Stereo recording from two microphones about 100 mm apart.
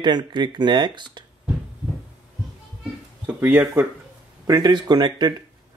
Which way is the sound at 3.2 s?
20° right (ahead or behind).